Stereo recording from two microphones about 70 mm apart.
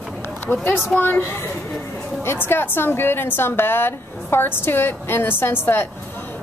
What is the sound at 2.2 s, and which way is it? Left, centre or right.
A woman's voice, left.